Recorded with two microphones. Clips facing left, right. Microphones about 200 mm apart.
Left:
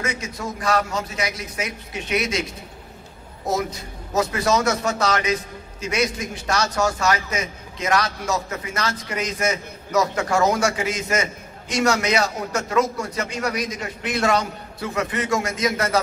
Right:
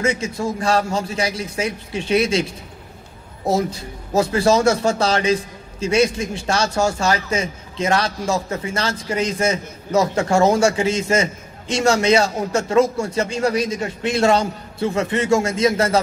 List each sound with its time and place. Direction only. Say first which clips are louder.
0.0 s a man's voice: right 7 dB; 25° right (ahead or behind)
3.4 s a man's voice: right 4 dB; 30° right (ahead or behind)